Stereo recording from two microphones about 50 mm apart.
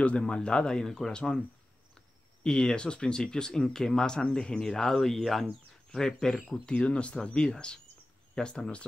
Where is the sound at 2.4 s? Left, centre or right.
Centre.